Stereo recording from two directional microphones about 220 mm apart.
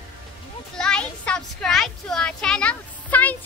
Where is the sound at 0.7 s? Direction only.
5° left (ahead or behind).